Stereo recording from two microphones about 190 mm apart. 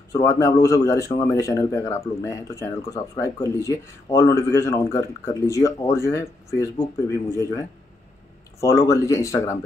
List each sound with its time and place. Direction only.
0.1 s speech: 15° left (ahead or behind)